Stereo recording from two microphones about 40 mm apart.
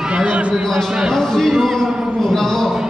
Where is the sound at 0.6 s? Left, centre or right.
Centre.